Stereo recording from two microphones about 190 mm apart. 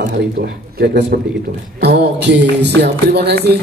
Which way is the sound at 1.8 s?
60° right (ahead or behind).